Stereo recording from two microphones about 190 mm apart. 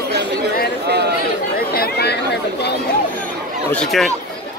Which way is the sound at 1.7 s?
55° left (ahead or behind).